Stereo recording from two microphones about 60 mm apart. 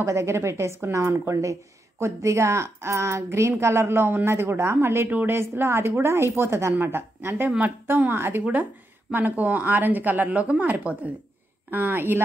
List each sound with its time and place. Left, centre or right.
0.0 s a woman's voice: right